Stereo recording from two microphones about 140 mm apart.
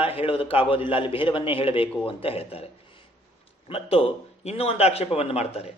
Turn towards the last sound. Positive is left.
turn(degrees=50)  # may be behind; listen again after turning